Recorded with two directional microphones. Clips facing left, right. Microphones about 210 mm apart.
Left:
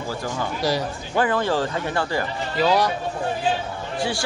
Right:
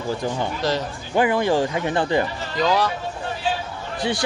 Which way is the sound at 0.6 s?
10° left (ahead or behind).